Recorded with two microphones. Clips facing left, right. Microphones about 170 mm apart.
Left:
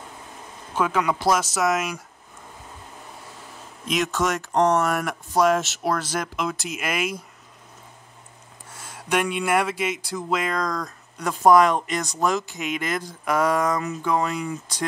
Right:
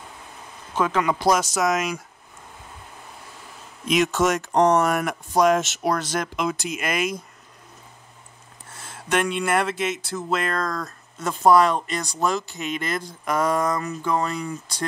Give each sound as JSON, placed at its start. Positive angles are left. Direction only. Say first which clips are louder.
{"t": 0.7, "sound": "speech", "louder": "right 1 dB", "side_deg": 10}
{"t": 4.1, "sound": "speech", "louder": "right 3 dB", "side_deg": -20}
{"t": 5.4, "sound": "speech", "louder": "right 1 dB", "side_deg": 0}
{"t": 8.8, "sound": "speech", "louder": "even", "side_deg": 10}